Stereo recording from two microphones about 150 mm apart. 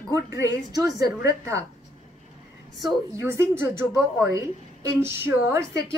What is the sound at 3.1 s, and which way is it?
A woman's voice, 20° right (ahead or behind).